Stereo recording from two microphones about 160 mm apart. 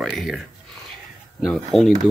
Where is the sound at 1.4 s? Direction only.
Centre (ahead or behind).